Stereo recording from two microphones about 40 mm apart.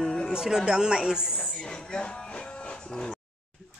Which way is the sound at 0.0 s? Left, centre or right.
Centre.